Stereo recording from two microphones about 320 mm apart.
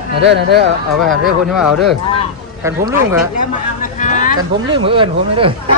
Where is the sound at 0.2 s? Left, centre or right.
Right.